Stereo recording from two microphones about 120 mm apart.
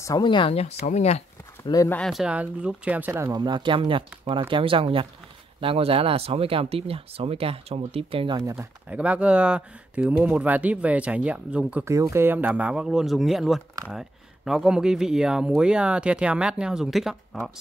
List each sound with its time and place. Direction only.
0.2 s speech: 40° left (ahead or behind); by 1.2 s 70° left (ahead or behind)
1.9 s speech: 5° left (ahead or behind)
2.2 s speech: 10° right (ahead or behind)
3.3 s speech: 35° right (ahead or behind); by 8.4 s 50° right (ahead or behind)
8.4 s speech: 25° right (ahead or behind)
8.8 s speech: 10° right (ahead or behind)
11.8 s speech: 25° right (ahead or behind); by 17.4 s centre (ahead or behind)